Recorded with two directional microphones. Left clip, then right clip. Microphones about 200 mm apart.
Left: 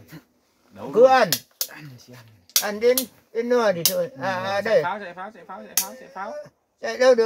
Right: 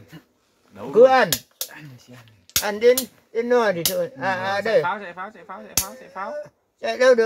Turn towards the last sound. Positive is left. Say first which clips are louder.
# right 1 dB
turn(degrees=-30)  # may be behind; listen again after turning